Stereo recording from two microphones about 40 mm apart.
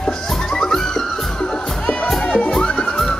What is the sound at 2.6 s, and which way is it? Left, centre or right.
Music, left.